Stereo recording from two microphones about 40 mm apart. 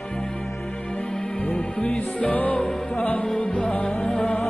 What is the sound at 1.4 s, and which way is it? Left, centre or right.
Music, left.